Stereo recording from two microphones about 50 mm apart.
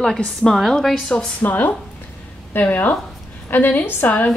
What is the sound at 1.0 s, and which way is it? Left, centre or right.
A woman's voice, left.